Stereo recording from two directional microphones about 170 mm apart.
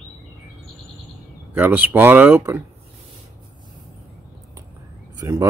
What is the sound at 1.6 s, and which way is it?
A man's voice, 10° right (ahead or behind).